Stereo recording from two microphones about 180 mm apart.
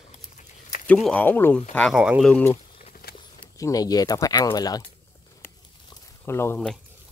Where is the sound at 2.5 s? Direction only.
35° left (ahead or behind).